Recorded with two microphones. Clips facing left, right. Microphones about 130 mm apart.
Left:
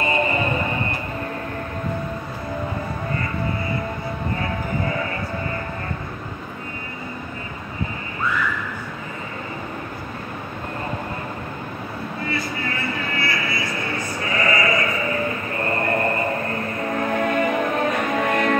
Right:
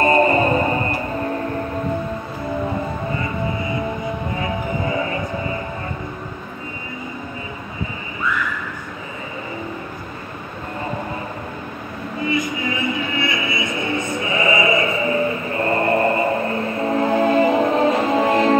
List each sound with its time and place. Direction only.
0.0 s music: 40° right (ahead or behind)
3.2 s music: 20° right (ahead or behind)
12.3 s music: 15° right (ahead or behind)